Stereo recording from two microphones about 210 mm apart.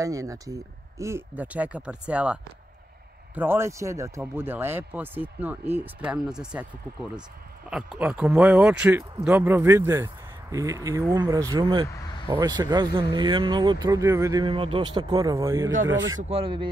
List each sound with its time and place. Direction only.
0.0 s speech: 15° right (ahead or behind)
3.3 s speech: 10° right (ahead or behind)
7.7 s speech: 5° right (ahead or behind); by 15.3 s 25° right (ahead or behind)
15.3 s speech: 15° right (ahead or behind)
16.2 s a man's voice: 30° right (ahead or behind)